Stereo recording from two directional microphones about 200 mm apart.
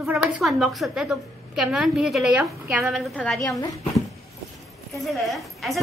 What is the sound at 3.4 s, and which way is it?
Speech, 15° left (ahead or behind).